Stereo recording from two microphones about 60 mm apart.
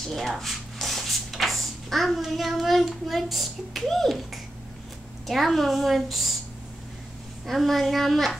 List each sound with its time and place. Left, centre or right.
0.1 s a woman's voice: centre
7.4 s a woman's voice: centre